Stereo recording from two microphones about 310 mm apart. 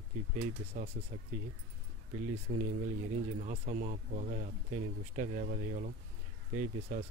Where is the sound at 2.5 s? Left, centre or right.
Right.